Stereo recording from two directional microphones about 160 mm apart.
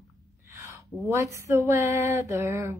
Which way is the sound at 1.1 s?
20° right (ahead or behind).